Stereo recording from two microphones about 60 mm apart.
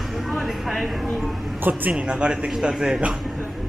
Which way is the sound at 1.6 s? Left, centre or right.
Right.